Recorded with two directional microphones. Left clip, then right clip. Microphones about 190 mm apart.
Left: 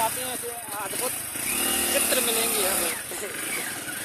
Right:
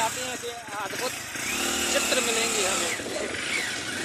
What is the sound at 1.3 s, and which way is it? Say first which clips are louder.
Vehicle: right 1 dB; 10° left (ahead or behind).